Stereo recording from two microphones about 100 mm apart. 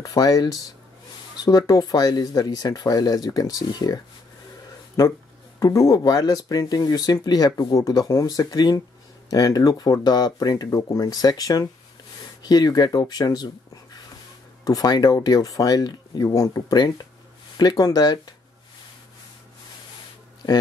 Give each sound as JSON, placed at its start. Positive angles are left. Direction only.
{"t": 0.0, "sound": "speech", "side_deg": 40}
{"t": 5.6, "sound": "speech", "side_deg": 35}
{"t": 14.6, "sound": "speech", "side_deg": 40}
{"t": 16.7, "sound": "speech", "side_deg": 45}